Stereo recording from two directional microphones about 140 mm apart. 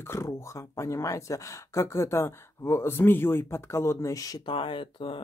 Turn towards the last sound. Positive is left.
turn(degrees=35)  # may be behind; listen again after turning